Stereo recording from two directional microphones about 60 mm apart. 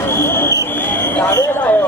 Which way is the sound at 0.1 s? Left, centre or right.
Left.